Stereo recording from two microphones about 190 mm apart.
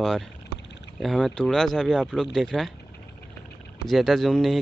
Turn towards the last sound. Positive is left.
turn(degrees=0)  # may be behind; listen again after turning